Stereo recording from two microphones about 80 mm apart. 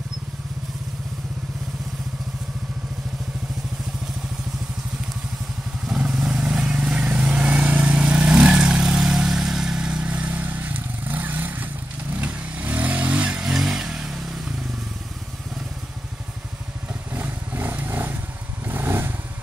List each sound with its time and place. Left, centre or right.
5.9 s vehicle: centre
17.1 s vehicle: right
18.7 s motorcycle: right